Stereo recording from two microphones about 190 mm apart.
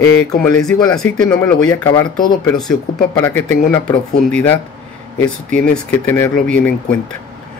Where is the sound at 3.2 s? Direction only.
10° left (ahead or behind).